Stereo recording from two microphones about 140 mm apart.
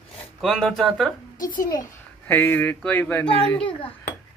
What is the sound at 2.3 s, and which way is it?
Speech, 15° left (ahead or behind).